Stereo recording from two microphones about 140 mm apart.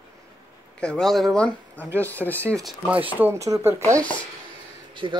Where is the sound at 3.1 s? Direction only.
15° right (ahead or behind).